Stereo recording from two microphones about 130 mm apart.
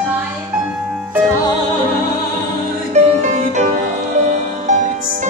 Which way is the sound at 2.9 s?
65° right (ahead or behind).